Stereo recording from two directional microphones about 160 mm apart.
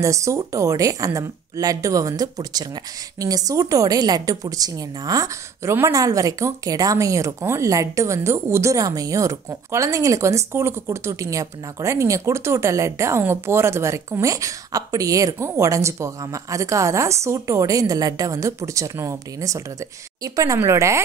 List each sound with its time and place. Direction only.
0.0 s a woman's voice: 20° right (ahead or behind)